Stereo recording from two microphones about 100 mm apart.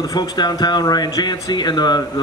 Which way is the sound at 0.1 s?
45° left (ahead or behind).